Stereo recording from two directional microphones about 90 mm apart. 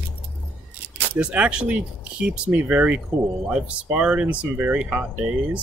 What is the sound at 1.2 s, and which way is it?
Speech, 15° right (ahead or behind).